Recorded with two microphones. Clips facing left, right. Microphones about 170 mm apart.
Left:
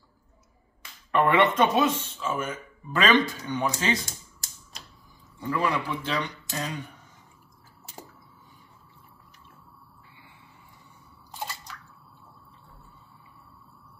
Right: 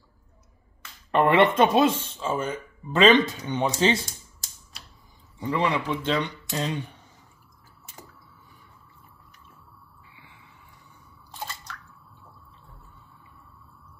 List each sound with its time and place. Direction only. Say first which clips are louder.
1.1 s speech: right 2 dB; 30° right (ahead or behind)
5.5 s speech: right 2 dB; 25° right (ahead or behind)